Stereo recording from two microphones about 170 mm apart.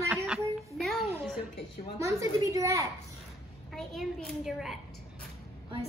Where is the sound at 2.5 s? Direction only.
20° right (ahead or behind).